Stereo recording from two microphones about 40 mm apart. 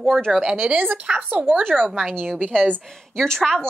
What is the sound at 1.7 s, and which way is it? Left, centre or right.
Speech, centre.